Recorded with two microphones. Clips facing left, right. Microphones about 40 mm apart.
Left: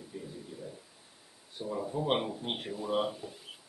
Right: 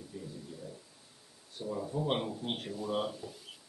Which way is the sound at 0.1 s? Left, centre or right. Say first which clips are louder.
Left 2 dB; centre.